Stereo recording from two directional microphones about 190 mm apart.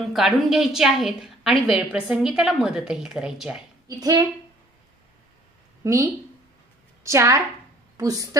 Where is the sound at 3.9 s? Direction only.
20° right (ahead or behind).